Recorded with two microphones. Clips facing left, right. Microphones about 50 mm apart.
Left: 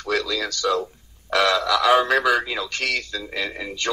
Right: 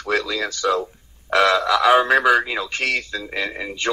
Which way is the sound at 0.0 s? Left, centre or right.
Centre.